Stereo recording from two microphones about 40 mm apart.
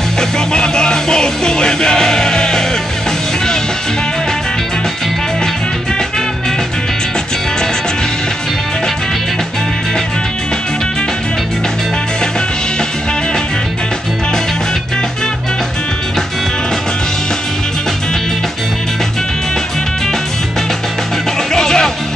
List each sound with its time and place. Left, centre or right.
0.2 s music: centre
21.5 s music: centre